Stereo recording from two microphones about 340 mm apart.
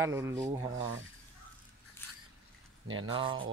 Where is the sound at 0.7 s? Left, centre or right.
Right.